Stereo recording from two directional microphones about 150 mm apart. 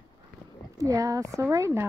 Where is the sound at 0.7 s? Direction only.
20° right (ahead or behind).